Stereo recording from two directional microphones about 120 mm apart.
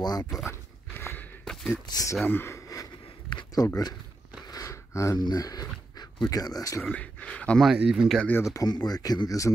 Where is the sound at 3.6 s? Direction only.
30° left (ahead or behind).